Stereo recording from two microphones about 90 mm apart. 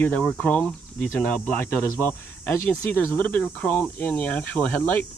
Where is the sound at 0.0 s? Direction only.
15° left (ahead or behind).